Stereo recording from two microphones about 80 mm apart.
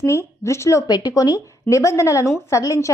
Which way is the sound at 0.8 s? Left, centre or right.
Left.